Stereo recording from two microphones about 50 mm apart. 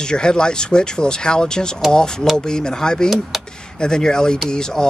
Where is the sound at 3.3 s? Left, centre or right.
Centre.